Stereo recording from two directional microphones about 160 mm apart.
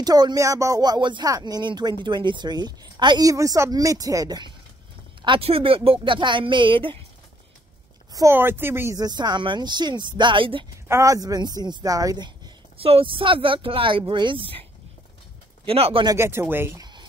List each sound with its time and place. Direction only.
0.0 s speech: 25° right (ahead or behind)
8.1 s speech: 20° right (ahead or behind)
10.9 s speech: 20° right (ahead or behind)
12.7 s speech: 35° right (ahead or behind)
15.6 s speech: 35° right (ahead or behind)
16.2 s speech: 15° right (ahead or behind)
16.8 s a sound: 25° right (ahead or behind)